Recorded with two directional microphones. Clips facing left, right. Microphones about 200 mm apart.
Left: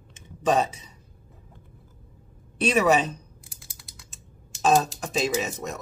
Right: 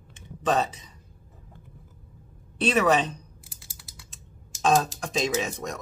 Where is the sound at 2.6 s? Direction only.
10° left (ahead or behind).